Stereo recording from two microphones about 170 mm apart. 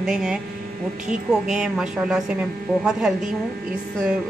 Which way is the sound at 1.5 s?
5° right (ahead or behind).